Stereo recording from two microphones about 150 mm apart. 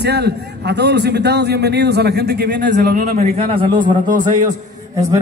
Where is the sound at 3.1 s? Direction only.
45° right (ahead or behind).